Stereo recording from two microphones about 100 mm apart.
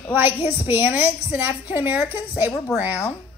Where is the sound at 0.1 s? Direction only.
20° right (ahead or behind).